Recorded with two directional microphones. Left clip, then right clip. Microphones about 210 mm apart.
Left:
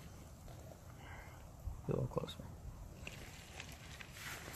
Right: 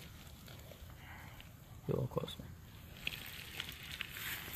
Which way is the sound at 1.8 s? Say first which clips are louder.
Right 2 dB; 15° right (ahead or behind).